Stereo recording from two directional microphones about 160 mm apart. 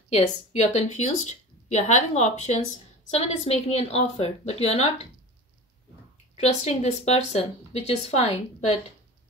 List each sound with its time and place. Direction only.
0.1 s a woman's voice: 45° left (ahead or behind)
6.3 s speech: 40° left (ahead or behind)